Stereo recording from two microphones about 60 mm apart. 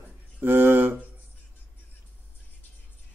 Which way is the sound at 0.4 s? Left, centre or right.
Right.